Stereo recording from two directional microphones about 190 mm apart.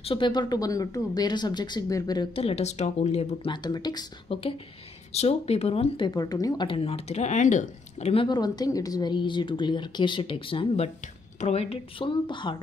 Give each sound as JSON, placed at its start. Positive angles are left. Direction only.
{"t": 0.0, "sound": "speech", "side_deg": 25}